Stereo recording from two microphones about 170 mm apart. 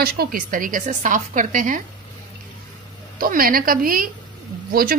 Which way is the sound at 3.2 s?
60° right (ahead or behind).